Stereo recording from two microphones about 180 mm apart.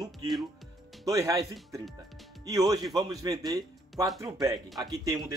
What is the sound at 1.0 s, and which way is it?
A man's voice, 20° right (ahead or behind).